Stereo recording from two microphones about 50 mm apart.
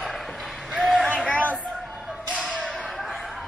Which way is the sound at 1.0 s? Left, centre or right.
Right.